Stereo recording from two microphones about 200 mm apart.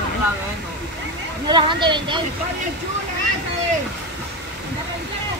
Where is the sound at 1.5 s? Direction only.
25° right (ahead or behind).